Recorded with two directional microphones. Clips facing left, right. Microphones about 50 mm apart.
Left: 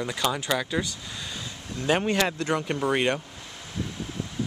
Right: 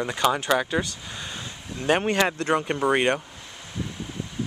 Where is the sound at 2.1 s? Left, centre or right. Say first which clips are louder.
Right 3 dB; centre.